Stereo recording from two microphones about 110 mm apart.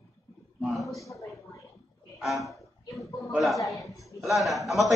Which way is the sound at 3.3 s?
Centre (ahead or behind).